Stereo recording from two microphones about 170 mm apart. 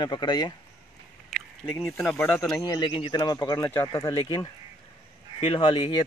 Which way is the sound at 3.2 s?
20° left (ahead or behind).